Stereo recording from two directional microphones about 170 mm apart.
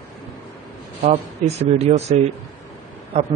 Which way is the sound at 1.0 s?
40° right (ahead or behind).